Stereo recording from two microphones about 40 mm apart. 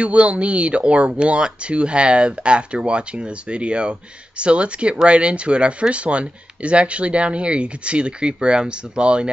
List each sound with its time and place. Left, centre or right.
0.0 s speech: right